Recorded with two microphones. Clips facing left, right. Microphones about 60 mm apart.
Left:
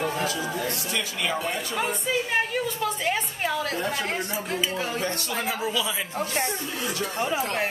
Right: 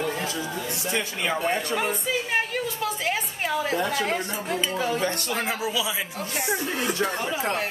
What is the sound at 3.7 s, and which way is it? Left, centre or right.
Speech, right.